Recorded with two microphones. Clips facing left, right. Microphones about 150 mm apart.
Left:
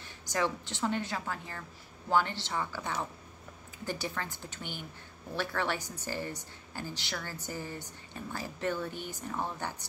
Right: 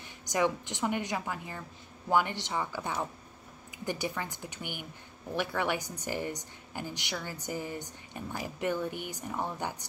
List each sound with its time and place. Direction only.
0.0 s a woman's voice: 15° right (ahead or behind)